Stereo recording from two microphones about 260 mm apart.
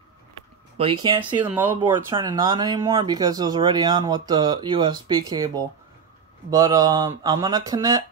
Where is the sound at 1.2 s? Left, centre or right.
Centre.